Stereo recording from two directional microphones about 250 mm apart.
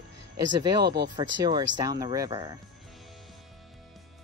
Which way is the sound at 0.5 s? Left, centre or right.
Centre.